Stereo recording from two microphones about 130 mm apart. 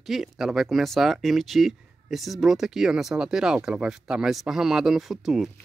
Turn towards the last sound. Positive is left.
turn(degrees=0)  # may be behind; listen again after turning